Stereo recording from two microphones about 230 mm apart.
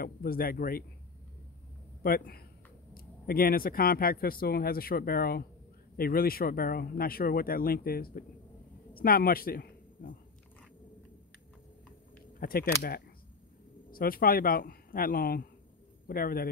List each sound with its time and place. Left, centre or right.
0.0 s speech: left
2.0 s speech: left
12.4 s speech: left